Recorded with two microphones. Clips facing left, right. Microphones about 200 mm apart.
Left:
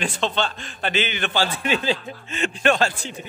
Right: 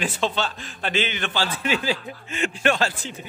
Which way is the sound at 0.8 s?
65° left (ahead or behind).